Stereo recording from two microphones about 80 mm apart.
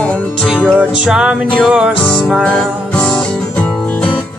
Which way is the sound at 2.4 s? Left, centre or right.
Centre.